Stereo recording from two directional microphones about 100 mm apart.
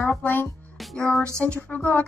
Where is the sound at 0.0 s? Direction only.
20° left (ahead or behind).